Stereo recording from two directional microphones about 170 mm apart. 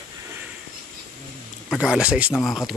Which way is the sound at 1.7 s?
5° right (ahead or behind).